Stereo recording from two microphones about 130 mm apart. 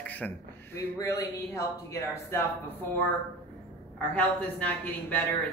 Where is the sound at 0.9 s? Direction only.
25° left (ahead or behind).